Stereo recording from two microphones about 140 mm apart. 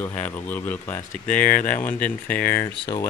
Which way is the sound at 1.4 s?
85° left.